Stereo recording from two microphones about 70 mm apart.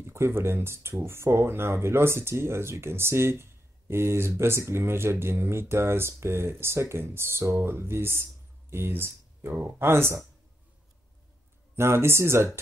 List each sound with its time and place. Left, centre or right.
0.0 s speech: right
11.7 s speech: right